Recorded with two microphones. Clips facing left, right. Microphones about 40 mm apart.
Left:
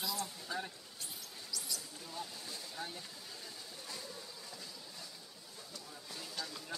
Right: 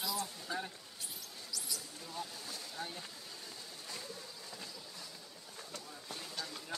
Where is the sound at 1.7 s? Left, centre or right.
Centre.